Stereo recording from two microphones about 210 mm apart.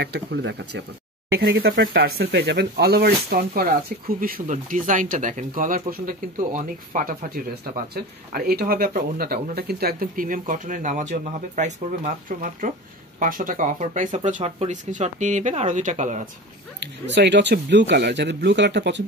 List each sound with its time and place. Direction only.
0.0 s speech: 50° right (ahead or behind); by 16.3 s 35° right (ahead or behind)
17.0 s speech: 55° right (ahead or behind)